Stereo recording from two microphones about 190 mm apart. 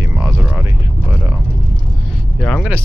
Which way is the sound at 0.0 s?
15° right (ahead or behind).